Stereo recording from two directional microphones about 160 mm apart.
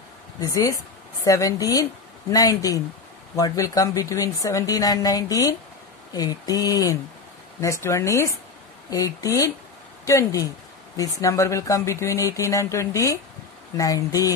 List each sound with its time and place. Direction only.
0.4 s speech: 20° left (ahead or behind)